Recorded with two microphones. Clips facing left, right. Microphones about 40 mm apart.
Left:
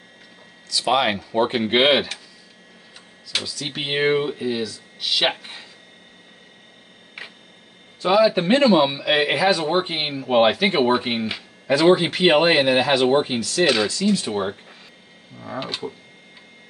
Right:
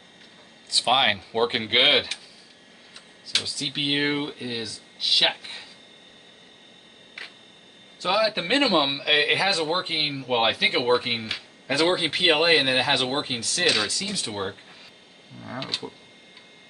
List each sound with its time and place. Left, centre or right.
0.7 s speech: right
0.9 s speech: centre
1.8 s speech: centre
3.6 s speech: centre
8.0 s speech: centre
8.5 s speech: centre
9.0 s speech: centre